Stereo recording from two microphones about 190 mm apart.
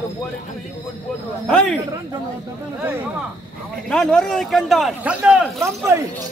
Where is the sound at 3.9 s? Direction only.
5° left (ahead or behind).